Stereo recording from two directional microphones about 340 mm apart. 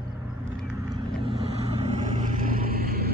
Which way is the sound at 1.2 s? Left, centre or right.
Centre.